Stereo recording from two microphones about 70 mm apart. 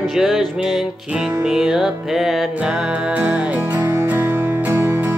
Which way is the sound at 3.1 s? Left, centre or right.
Right.